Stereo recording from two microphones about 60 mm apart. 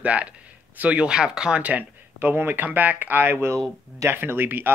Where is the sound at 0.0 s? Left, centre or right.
Right.